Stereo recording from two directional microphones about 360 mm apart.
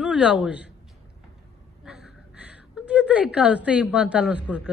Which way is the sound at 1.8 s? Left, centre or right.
Centre.